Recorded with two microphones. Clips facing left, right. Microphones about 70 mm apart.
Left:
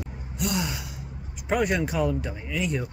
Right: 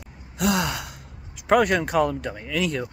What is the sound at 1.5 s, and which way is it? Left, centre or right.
Speech, right.